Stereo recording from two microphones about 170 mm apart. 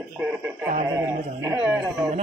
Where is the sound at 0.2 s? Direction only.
15° right (ahead or behind).